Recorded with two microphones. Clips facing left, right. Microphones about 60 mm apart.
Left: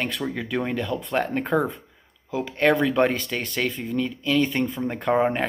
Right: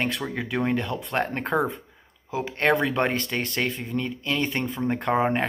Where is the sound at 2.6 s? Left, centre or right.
Right.